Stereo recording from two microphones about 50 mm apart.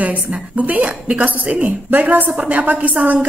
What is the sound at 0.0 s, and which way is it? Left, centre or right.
A woman's voice, right.